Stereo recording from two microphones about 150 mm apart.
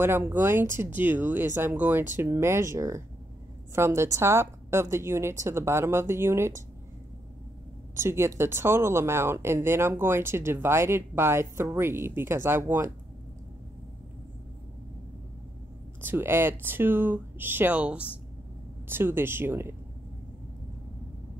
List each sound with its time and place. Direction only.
0.0 s speech: 15° right (ahead or behind)
7.9 s speech: 15° right (ahead or behind)
16.0 s speech: 15° right (ahead or behind)